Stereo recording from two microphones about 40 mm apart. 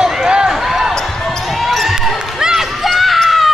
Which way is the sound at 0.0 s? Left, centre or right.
Centre.